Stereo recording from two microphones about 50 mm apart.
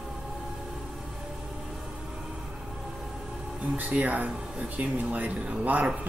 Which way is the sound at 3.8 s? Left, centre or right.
Right.